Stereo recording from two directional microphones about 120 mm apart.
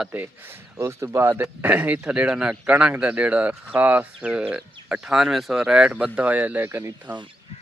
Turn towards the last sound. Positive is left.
turn(degrees=-15)  # may be behind; listen again after turning